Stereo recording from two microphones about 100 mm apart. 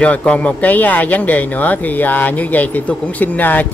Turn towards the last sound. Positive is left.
turn(degrees=15)  # may be behind; listen again after turning